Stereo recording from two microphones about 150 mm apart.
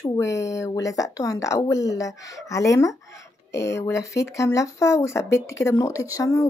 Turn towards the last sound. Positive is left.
turn(degrees=20)  # may be behind; listen again after turning